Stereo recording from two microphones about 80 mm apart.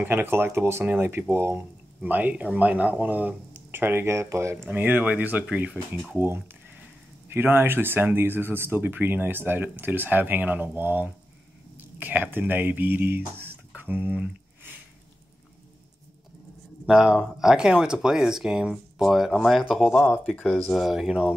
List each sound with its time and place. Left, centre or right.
0.0 s speech: right
4.6 s speech: right
16.8 s speech: centre
20.3 s speech: centre
20.7 s speech: centre